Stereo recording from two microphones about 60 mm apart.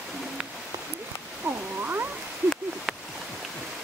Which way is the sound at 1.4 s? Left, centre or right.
Right.